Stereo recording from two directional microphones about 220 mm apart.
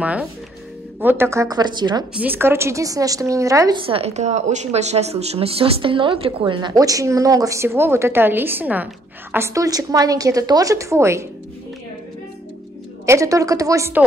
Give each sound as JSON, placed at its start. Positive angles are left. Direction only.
{"t": 0.0, "sound": "a woman's voice", "side_deg": -5}
{"t": 2.1, "sound": "a woman's voice", "side_deg": -10}
{"t": 13.0, "sound": "a woman's voice", "side_deg": -15}